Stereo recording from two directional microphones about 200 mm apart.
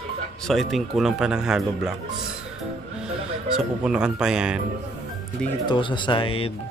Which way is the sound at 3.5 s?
5° right (ahead or behind).